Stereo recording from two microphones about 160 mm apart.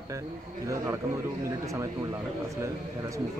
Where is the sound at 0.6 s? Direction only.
20° right (ahead or behind).